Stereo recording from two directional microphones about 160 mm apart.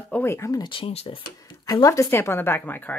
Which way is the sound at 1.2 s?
25° left (ahead or behind).